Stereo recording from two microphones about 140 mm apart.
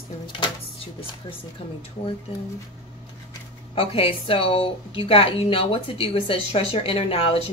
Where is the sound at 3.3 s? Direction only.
40° left (ahead or behind).